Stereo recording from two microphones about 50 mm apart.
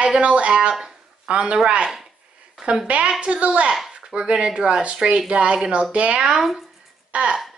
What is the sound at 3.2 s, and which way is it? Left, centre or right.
A woman's voice, right.